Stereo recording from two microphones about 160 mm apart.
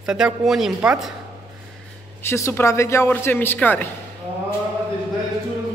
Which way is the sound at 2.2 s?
15° left (ahead or behind).